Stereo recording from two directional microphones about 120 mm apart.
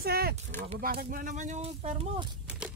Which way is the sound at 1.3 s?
85° right.